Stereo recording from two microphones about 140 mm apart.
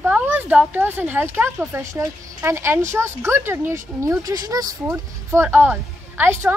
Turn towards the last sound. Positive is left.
turn(degrees=-15)  # may be behind; listen again after turning